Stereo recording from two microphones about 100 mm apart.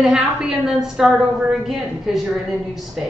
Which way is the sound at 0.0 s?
5° right (ahead or behind).